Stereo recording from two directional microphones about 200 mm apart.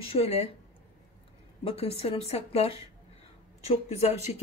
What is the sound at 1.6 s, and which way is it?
Speech, 30° left (ahead or behind).